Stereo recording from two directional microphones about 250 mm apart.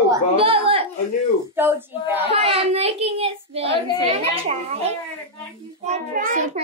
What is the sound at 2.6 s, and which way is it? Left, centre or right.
A child's voice, right.